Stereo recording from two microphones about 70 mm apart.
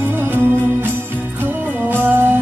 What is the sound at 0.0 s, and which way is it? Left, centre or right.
Music, right.